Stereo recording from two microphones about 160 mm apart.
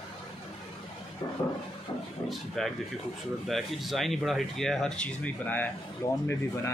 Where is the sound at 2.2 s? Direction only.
Centre (ahead or behind).